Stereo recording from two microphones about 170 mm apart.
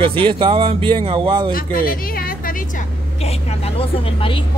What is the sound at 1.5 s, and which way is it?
A woman's voice, 55° left (ahead or behind).